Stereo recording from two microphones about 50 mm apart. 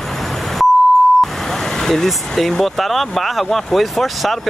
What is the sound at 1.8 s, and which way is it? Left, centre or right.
Speech, centre.